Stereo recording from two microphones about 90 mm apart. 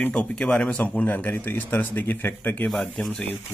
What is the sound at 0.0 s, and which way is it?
Speech, 15° left (ahead or behind).